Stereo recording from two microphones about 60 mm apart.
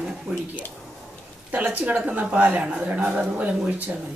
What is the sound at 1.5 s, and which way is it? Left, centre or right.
Speech, right.